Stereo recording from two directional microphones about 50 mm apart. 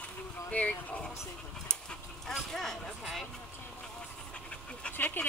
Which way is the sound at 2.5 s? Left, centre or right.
Centre.